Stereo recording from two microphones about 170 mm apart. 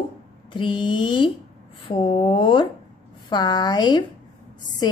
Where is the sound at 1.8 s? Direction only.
30° left (ahead or behind).